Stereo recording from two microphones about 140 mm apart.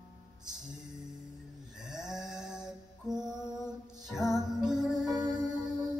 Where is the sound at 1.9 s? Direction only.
5° right (ahead or behind).